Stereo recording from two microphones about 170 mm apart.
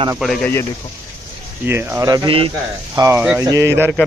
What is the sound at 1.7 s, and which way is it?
Speech, 15° right (ahead or behind).